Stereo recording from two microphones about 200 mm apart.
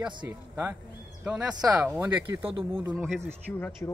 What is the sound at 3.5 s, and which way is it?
Speech, 10° left (ahead or behind).